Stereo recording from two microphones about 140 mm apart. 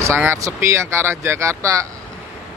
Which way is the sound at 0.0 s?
20° right (ahead or behind).